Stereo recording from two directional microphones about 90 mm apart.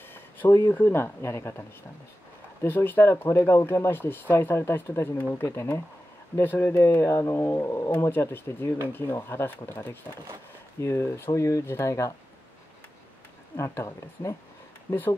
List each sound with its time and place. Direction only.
0.1 s a sound: 25° left (ahead or behind)
0.7 s speech: 20° left (ahead or behind)
13.6 s speech: 35° left (ahead or behind)